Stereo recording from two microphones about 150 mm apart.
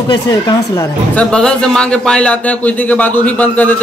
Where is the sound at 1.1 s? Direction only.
5° left (ahead or behind).